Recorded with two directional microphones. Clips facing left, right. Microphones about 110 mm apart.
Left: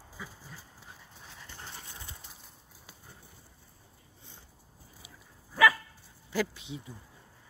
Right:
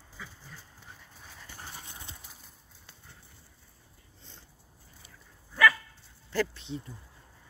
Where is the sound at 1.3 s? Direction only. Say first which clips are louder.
Right 1 dB; 10° right (ahead or behind).